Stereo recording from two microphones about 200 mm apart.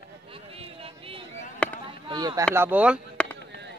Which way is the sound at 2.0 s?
20° right (ahead or behind).